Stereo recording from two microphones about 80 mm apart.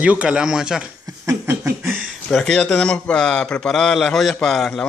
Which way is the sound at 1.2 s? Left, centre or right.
Right.